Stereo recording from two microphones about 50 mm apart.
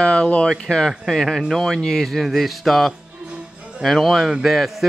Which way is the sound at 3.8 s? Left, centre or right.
Centre.